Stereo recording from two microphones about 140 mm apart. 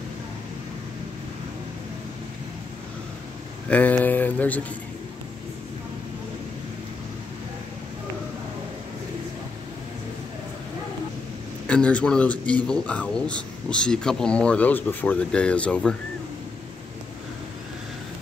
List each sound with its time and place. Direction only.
3.6 s speech: 10° left (ahead or behind)
11.6 s a man's voice: 10° left (ahead or behind)